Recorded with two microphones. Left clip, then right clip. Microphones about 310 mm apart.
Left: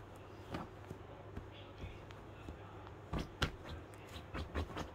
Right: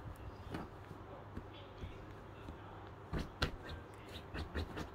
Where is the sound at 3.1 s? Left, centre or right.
Centre.